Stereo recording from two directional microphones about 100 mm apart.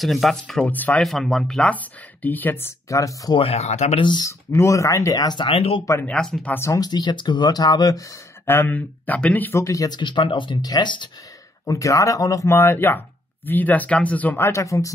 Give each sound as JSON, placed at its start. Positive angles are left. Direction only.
{"t": 0.0, "sound": "speech", "side_deg": 0}
{"t": 0.7, "sound": "speech", "side_deg": 15}
{"t": 1.0, "sound": "speech", "side_deg": 5}
{"t": 3.3, "sound": "speech", "side_deg": 85}
{"t": 4.0, "sound": "speech", "side_deg": 50}
{"t": 4.3, "sound": "speech", "side_deg": 30}
{"t": 5.5, "sound": "speech", "side_deg": 70}
{"t": 6.0, "sound": "speech", "side_deg": 5}
{"t": 6.5, "sound": "speech", "side_deg": 25}
{"t": 6.8, "sound": "speech", "side_deg": 50}
{"t": 8.5, "sound": "speech", "side_deg": 20}
{"t": 9.6, "sound": "speech", "side_deg": 35}
{"t": 9.9, "sound": "speech", "side_deg": 55}
{"t": 11.6, "sound": "speech", "side_deg": 35}